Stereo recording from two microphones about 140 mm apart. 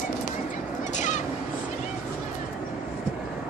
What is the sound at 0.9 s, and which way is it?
Vehicle, 60° left (ahead or behind).